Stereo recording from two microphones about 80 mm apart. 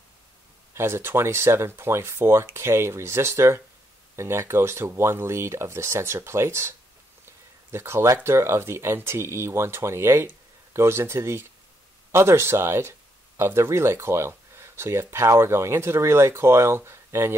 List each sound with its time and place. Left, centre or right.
0.7 s speech: right
7.7 s speech: right